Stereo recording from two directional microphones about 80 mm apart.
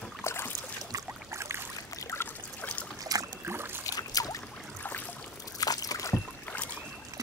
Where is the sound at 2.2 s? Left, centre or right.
Left.